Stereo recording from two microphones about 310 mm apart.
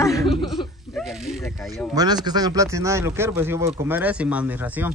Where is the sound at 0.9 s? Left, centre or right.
Centre.